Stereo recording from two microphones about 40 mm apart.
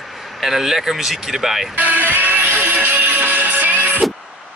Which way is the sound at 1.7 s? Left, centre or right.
Right.